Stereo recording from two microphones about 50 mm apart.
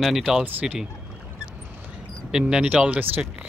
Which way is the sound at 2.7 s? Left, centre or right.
Right.